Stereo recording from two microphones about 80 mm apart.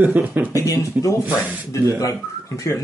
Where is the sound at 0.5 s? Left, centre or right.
Left.